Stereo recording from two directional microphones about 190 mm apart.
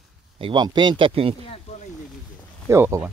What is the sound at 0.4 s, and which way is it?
Speech, 25° right (ahead or behind).